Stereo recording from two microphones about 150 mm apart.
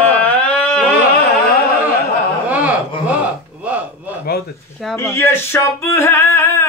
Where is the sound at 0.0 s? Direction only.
10° left (ahead or behind).